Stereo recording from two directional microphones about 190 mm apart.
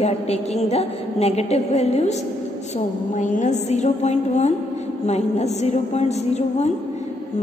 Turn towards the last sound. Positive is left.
turn(degrees=35)  # may be behind; listen again after turning